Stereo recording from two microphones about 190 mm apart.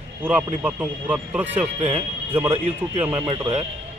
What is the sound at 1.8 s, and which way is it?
Speech, 35° right (ahead or behind).